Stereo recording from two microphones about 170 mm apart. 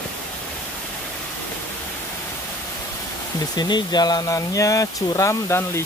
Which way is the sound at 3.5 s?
25° left (ahead or behind).